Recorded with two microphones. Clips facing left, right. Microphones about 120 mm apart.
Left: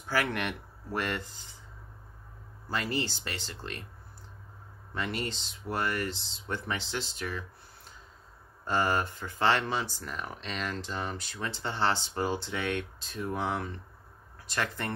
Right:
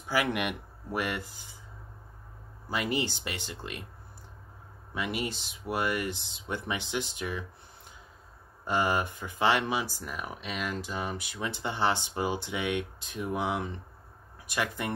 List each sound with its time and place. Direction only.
0.1 s speech: 15° right (ahead or behind)
2.7 s speech: 15° right (ahead or behind)
4.9 s speech: 10° right (ahead or behind)